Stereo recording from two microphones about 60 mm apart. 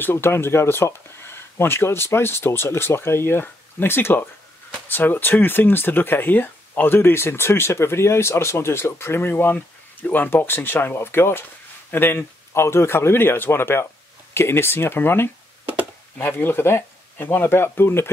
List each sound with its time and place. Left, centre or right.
0.0 s speech: left
15.6 s a sound: right
16.2 s speech: left